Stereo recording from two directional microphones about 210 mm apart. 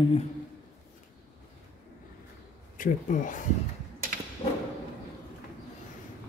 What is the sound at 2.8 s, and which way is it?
Speech, 40° left (ahead or behind).